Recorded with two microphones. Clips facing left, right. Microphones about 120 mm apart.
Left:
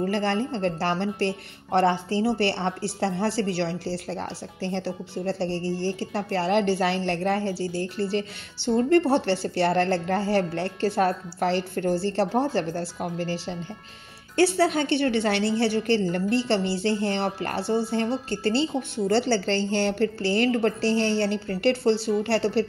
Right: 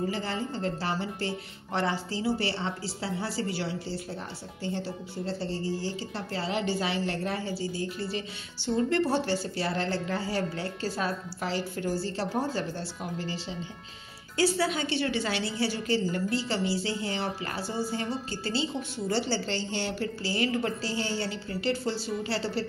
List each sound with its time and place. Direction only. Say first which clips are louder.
0.0 s a woman's voice: left 6 dB; 70° left (ahead or behind)
8.6 s speech: left 6 dB; 50° left (ahead or behind)
9.1 s a woman's voice: left 5 dB; 65° left (ahead or behind)